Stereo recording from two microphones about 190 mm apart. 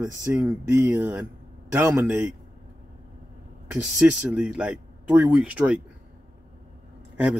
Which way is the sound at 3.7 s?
5° right (ahead or behind).